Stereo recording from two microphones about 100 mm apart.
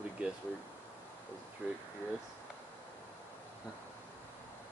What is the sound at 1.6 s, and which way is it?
Speech, 15° right (ahead or behind).